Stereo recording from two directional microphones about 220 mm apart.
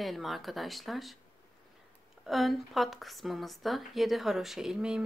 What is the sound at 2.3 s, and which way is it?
A woman's voice, centre (ahead or behind).